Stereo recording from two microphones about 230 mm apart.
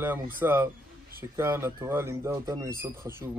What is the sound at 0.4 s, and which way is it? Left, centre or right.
Speech, centre.